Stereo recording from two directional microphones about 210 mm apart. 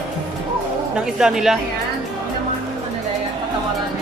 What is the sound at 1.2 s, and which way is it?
Speech, centre (ahead or behind).